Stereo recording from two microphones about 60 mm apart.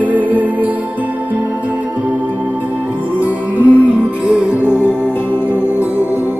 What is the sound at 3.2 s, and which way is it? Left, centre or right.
Music, right.